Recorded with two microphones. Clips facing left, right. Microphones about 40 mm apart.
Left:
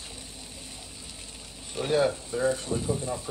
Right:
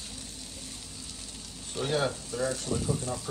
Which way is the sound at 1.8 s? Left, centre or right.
Left.